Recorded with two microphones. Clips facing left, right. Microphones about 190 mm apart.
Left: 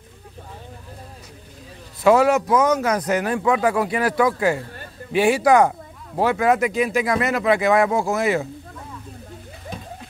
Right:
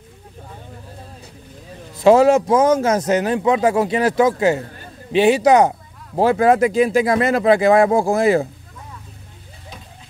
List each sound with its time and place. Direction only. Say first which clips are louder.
2.0 s a man's voice: right 4 dB; 25° right (ahead or behind)